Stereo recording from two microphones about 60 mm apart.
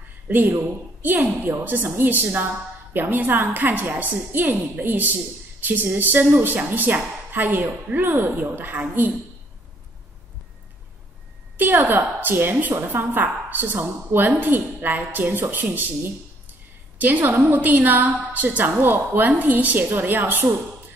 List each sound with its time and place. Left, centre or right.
0.3 s a woman's voice: right
11.5 s a woman's voice: right